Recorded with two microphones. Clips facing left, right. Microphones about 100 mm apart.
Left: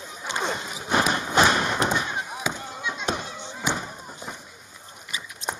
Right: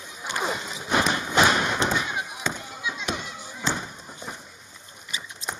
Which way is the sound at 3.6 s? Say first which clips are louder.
Left 1 dB; 10° left (ahead or behind).